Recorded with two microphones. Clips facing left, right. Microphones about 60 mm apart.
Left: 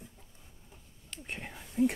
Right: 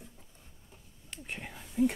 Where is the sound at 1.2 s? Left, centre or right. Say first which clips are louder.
Even; centre.